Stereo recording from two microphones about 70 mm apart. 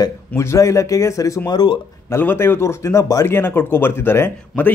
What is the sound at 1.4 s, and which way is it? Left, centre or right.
Speech, left.